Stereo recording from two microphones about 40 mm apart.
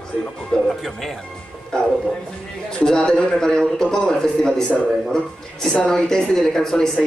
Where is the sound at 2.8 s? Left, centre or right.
Left.